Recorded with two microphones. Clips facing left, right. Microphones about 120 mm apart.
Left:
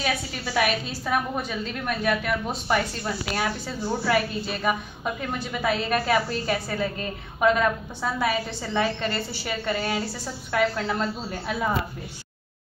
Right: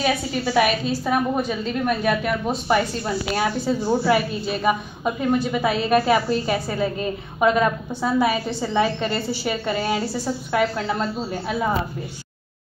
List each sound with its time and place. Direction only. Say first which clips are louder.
0.0 s a woman's voice: right 6 dB; 15° right (ahead or behind)